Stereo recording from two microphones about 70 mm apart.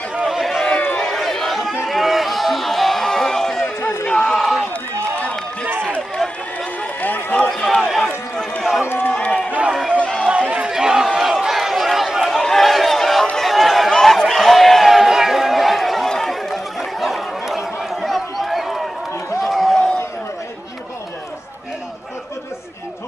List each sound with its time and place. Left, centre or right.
0.1 s run: centre
0.7 s run: centre
1.9 s a sound: centre
5.7 s run: right
5.9 s run: centre
7.5 s run: centre
8.8 s run: left
9.1 s run: centre
9.7 s crowd: centre
9.9 s run: centre
10.2 s run: centre
10.7 s crowd: centre
12.4 s a sound: centre